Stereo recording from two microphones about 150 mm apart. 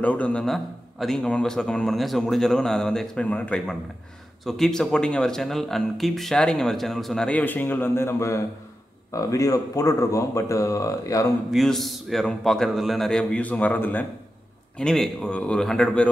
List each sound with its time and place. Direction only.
0.0 s speech: 10° left (ahead or behind)
11.5 s speech: centre (ahead or behind)